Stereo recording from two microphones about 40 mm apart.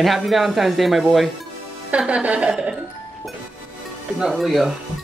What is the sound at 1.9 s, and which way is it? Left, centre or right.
Music, right.